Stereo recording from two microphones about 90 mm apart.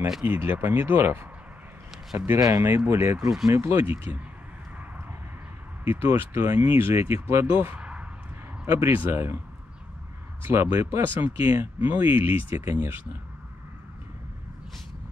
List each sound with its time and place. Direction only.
0.2 s speech: 25° right (ahead or behind)
3.2 s speech: 5° right (ahead or behind)
3.4 s speech: 30° right (ahead or behind)
5.9 s speech: 25° right (ahead or behind)
7.6 s a sound: 15° right (ahead or behind)
8.7 s speech: 25° right (ahead or behind)
10.4 s speech: 30° right (ahead or behind)